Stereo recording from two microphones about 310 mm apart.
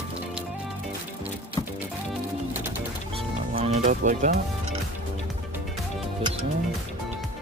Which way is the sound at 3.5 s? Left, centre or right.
Right.